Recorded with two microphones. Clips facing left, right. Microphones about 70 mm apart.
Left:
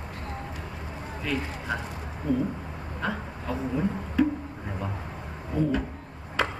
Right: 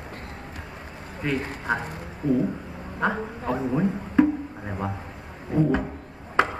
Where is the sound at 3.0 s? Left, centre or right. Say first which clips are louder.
Right 6 dB; right.